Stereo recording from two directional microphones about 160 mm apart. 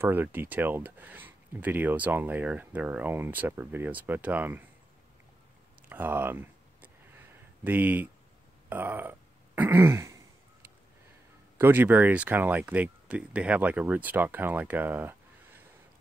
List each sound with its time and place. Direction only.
0.0 s speech: 15° right (ahead or behind)
5.9 s a sound: 10° right (ahead or behind)
7.6 s speech: 10° right (ahead or behind)
9.6 s throat clearing: 15° right (ahead or behind)
11.5 s speech: 15° right (ahead or behind)